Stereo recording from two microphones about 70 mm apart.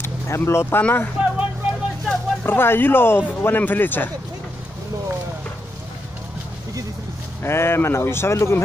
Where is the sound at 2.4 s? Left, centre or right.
Left.